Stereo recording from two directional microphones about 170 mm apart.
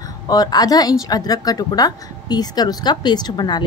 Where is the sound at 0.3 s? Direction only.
25° left (ahead or behind).